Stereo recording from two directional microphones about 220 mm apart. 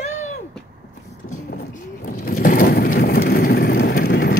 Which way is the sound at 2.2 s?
40° left (ahead or behind).